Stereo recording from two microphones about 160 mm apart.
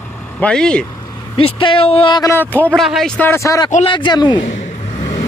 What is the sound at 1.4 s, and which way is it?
Speech, 35° left (ahead or behind).